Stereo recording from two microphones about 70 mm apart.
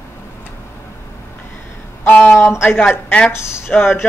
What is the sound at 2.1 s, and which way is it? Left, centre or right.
Speech, left.